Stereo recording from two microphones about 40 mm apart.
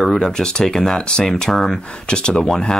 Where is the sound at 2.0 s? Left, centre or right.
Left.